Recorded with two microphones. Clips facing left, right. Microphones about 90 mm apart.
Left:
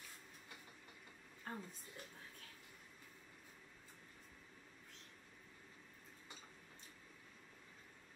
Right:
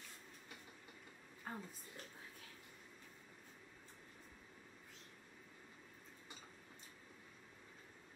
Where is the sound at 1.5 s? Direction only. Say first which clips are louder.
Even; 5° right (ahead or behind).